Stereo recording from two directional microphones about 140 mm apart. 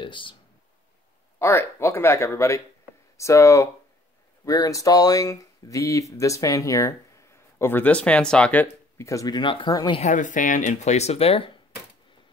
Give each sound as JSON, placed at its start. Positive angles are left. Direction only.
{"t": 0.0, "sound": "a sound", "side_deg": 35}
{"t": 1.4, "sound": "speech", "side_deg": 15}
{"t": 9.9, "sound": "speech", "side_deg": 60}